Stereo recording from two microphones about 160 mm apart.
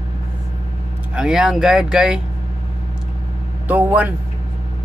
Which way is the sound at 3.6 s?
10° right (ahead or behind).